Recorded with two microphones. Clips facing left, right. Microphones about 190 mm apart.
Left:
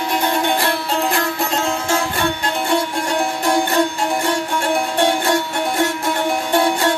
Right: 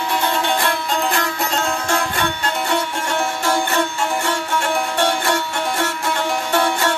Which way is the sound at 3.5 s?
15° left (ahead or behind).